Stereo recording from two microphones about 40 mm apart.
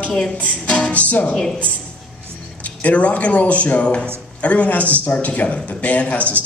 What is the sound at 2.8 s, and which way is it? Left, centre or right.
A woman's voice, left.